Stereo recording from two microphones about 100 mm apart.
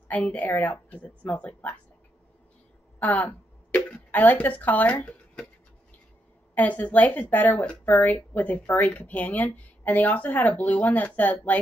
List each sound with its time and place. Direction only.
0.1 s speech: 15° left (ahead or behind)
3.0 s throat clearing: 15° left (ahead or behind)
6.5 s speech: 15° left (ahead or behind)